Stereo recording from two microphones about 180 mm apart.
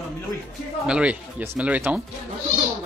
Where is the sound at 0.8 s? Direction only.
5° right (ahead or behind).